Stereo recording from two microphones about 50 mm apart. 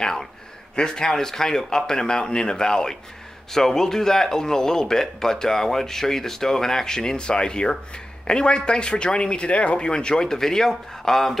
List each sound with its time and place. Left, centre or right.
0.0 s speech: centre